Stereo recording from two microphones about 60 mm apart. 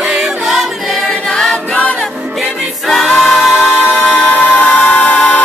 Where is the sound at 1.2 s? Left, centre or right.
Centre.